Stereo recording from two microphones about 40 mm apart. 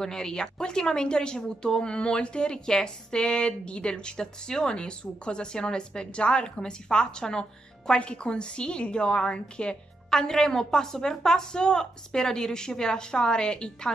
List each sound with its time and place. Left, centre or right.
0.0 s speech: centre
10.0 s a woman's voice: centre